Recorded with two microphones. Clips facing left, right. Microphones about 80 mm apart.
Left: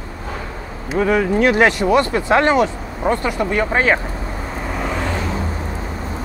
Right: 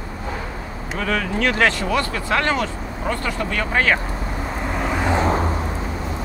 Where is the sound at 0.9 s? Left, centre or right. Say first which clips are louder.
Left 7 dB; centre.